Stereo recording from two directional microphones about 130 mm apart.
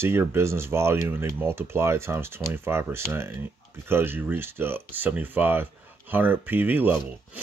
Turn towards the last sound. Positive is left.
turn(degrees=-15)  # may be behind; listen again after turning